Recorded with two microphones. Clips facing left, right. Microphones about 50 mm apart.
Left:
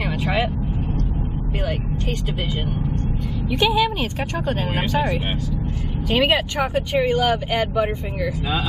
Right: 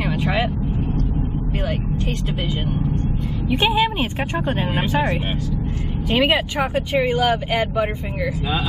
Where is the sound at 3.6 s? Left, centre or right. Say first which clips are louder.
Even; right.